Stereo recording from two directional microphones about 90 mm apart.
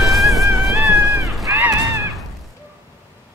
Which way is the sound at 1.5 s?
25° right (ahead or behind).